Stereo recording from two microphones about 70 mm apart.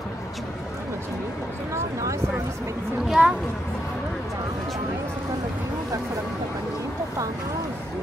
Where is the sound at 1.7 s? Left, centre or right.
Right.